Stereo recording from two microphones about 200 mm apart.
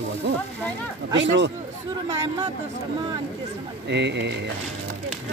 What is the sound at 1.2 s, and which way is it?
Speech, 60° right (ahead or behind).